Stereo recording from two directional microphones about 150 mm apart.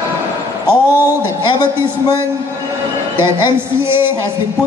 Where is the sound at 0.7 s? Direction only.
15° right (ahead or behind).